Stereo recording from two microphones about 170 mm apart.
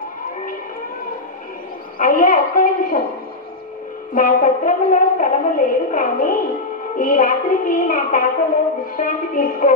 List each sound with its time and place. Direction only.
2.0 s brass instrument: 50° left (ahead or behind)
4.1 s brass instrument: 50° left (ahead or behind)